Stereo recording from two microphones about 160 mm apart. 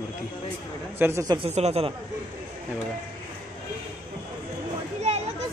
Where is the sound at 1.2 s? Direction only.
35° right (ahead or behind).